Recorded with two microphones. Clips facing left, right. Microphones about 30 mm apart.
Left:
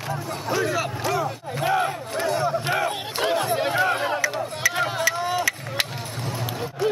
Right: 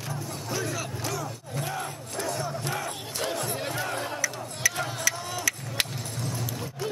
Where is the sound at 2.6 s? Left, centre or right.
Left.